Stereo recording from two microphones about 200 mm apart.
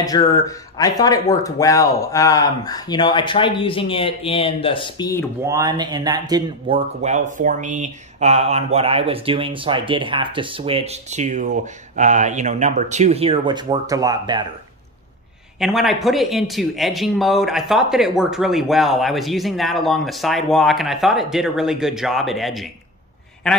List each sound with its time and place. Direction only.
0.0 s speech: 20° left (ahead or behind)
5.4 s speech: 15° right (ahead or behind)
7.0 s speech: 35° right (ahead or behind)
15.6 s speech: centre (ahead or behind)